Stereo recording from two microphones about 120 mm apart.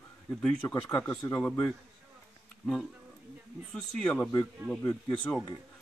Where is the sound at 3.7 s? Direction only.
5° left (ahead or behind).